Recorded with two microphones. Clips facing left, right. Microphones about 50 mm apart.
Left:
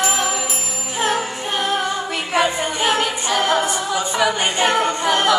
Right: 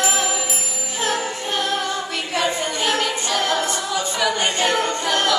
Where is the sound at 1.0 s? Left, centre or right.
Centre.